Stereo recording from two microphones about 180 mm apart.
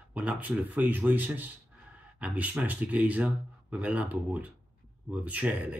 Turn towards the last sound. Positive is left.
turn(degrees=-10)  # may be behind; listen again after turning